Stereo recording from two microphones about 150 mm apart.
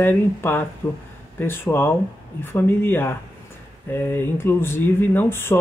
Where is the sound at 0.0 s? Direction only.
15° left (ahead or behind).